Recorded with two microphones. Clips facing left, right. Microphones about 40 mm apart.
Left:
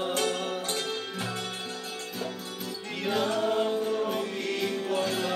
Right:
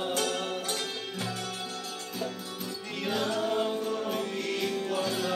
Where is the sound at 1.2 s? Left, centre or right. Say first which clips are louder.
Left 1 dB; left.